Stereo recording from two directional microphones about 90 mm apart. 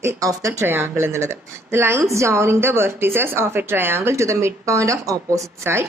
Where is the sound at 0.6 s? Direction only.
25° right (ahead or behind).